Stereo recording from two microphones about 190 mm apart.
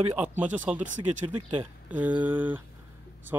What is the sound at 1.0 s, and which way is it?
Speech, 25° right (ahead or behind).